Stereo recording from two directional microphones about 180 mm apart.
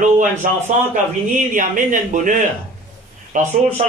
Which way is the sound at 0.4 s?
50° right (ahead or behind).